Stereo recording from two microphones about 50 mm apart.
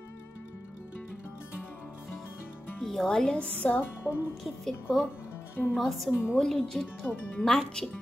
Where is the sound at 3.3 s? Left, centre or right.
Left.